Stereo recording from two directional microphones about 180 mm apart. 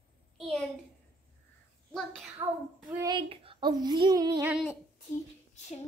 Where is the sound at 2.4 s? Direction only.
25° right (ahead or behind).